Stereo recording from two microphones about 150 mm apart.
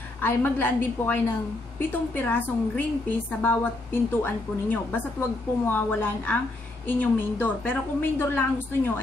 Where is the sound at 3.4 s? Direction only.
15° left (ahead or behind).